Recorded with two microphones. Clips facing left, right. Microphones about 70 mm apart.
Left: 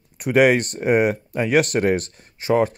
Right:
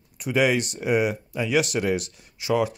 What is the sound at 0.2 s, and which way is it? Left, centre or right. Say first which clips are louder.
Speech: left 6 dB; left.